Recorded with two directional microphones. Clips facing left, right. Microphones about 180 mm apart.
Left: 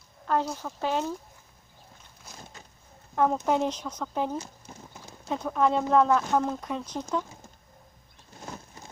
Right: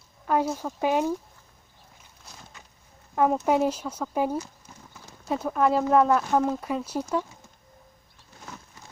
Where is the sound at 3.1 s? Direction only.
5° right (ahead or behind).